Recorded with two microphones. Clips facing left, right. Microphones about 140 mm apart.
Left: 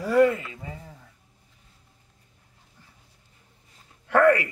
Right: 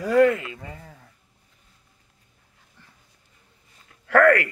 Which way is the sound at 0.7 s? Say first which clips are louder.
Left 1 dB; 15° left (ahead or behind).